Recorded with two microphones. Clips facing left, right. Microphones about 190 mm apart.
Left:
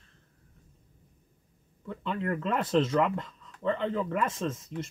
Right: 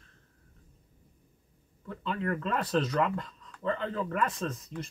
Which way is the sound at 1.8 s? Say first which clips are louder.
Left 1 dB; 25° left (ahead or behind).